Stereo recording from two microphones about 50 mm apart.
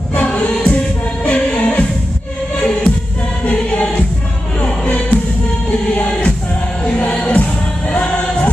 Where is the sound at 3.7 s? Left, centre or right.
Centre.